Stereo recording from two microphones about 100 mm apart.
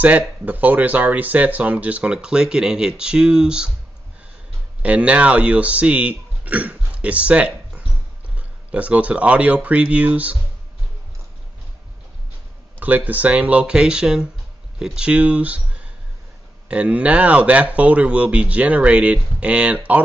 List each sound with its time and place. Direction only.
0.5 s speech: 15° right (ahead or behind)
4.8 s speech: 10° right (ahead or behind)
12.7 s speech: 15° right (ahead or behind)